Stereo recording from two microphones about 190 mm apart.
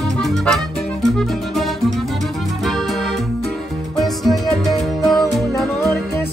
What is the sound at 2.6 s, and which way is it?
Accordion, centre (ahead or behind).